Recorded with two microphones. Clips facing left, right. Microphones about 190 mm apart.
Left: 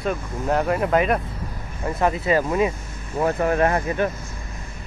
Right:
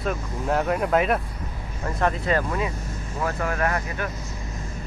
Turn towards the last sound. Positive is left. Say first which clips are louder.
# left 6 dB
turn(degrees=25)  # may be behind; listen again after turning